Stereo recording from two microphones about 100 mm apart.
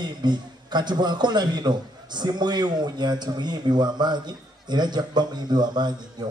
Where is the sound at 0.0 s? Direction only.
45° right (ahead or behind).